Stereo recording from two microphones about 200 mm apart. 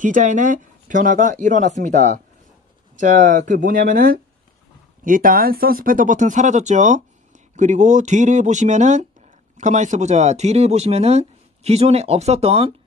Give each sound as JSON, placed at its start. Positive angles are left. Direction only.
{"t": 0.0, "sound": "speech", "side_deg": -40}